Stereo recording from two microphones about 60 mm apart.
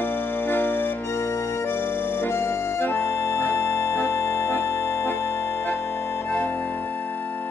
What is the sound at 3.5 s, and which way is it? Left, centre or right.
Music, left.